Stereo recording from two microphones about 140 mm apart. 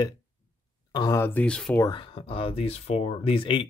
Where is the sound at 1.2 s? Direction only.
15° left (ahead or behind).